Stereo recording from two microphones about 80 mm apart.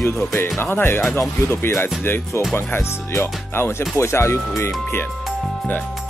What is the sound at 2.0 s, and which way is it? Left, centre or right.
Speech, left.